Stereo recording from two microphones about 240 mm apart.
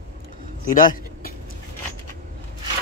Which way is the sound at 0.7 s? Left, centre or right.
Left.